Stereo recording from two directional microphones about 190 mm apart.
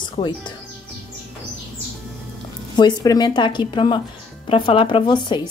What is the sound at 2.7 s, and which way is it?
Speech, 20° left (ahead or behind).